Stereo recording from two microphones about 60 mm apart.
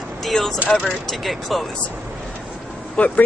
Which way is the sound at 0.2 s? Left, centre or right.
Centre.